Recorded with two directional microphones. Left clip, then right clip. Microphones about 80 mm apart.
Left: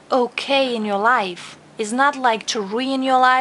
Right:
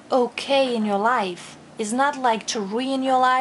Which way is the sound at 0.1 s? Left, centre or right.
Left.